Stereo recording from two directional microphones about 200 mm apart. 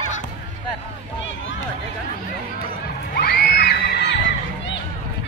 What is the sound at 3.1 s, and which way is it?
Children shouting, 50° left (ahead or behind).